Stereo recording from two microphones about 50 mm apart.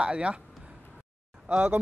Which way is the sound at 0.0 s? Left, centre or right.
Right.